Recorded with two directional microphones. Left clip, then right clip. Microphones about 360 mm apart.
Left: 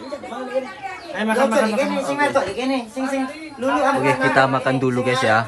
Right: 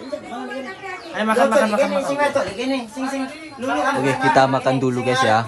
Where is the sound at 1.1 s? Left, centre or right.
Centre.